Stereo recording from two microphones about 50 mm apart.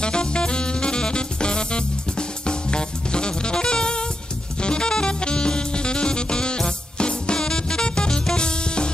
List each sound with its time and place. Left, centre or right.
0.0 s music: centre
4.6 s saxophone: centre